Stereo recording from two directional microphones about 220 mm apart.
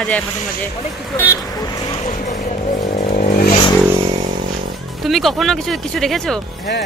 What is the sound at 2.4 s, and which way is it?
Vehicle, 35° left (ahead or behind).